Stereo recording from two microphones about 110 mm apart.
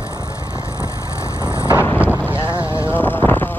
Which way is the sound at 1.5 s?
25° left (ahead or behind).